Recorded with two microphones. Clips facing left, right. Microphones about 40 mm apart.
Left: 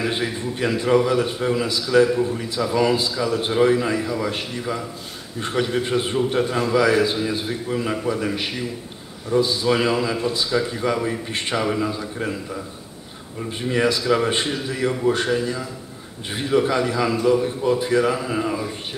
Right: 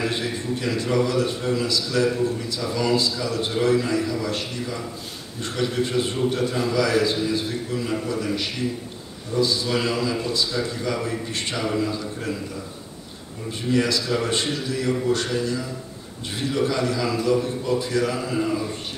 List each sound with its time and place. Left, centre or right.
0.0 s a man's voice: left
13.5 s a man's voice: left